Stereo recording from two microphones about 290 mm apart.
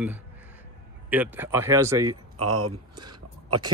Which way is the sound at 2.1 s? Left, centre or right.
Right.